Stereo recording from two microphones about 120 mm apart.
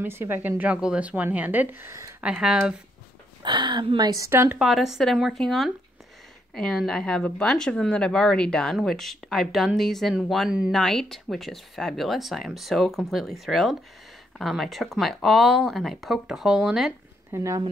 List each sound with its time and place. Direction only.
0.0 s a woman's voice: 20° right (ahead or behind)
2.2 s a woman's voice: 10° right (ahead or behind)
3.4 s speech: 40° right (ahead or behind)
4.3 s speech: 20° right (ahead or behind)
4.6 s speech: 5° right (ahead or behind)
17.3 s speech: 25° right (ahead or behind)